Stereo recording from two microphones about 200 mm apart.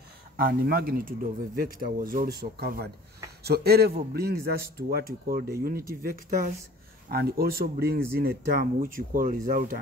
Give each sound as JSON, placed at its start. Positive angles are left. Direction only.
{"t": 0.4, "sound": "speech", "side_deg": -50}
{"t": 7.1, "sound": "speech", "side_deg": -50}